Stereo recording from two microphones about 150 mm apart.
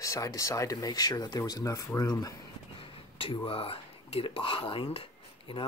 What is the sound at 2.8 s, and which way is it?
Speech, 35° left (ahead or behind).